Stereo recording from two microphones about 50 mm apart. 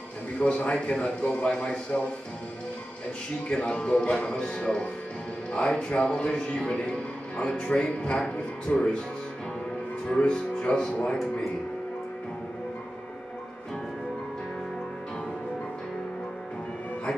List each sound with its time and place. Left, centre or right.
0.4 s a man's voice: left
3.4 s a man's voice: left
10.0 s a man's voice: centre